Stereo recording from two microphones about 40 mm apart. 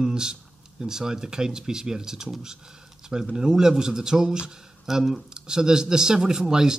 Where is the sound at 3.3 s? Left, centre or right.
Centre.